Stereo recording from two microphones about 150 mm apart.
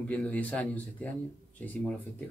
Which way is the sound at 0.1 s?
10° left (ahead or behind).